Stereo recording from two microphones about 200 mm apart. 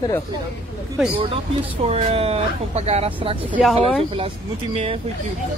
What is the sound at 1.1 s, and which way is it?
Speech, 25° right (ahead or behind).